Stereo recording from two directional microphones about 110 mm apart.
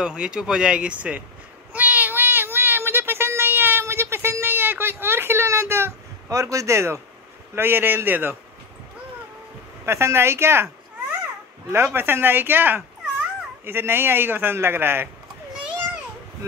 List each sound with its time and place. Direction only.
0.0 s speech: 10° right (ahead or behind)
1.7 s meow: 15° right (ahead or behind)
7.5 s a man's voice: 20° right (ahead or behind)
9.8 s a man's voice: 25° right (ahead or behind)
11.7 s a man's voice: 20° right (ahead or behind)